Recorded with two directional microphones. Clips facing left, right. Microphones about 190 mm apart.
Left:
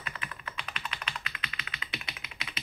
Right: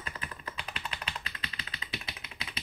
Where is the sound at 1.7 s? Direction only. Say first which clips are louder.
Even; 30° right (ahead or behind).